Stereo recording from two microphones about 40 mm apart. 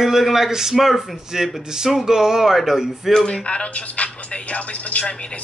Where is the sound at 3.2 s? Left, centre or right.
Left.